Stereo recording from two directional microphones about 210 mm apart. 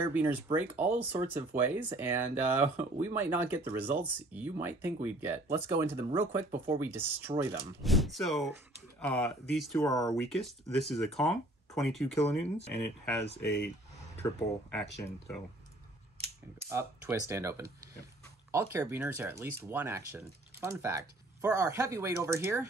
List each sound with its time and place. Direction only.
0.0 s speech: 10° right (ahead or behind)
9.8 s speech: 15° left (ahead or behind)
10.3 s speech: centre (ahead or behind)
16.6 s speech: 15° right (ahead or behind)